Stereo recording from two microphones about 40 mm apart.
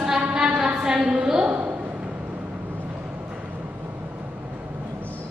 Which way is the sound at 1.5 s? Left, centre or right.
Right.